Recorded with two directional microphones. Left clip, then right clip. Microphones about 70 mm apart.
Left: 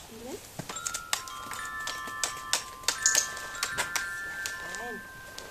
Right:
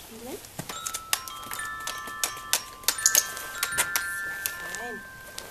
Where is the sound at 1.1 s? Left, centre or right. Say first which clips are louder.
Right 4 dB; centre.